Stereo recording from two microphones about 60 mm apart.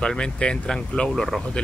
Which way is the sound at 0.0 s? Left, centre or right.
Centre.